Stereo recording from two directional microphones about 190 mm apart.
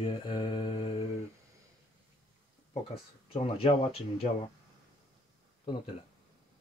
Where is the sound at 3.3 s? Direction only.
30° left (ahead or behind).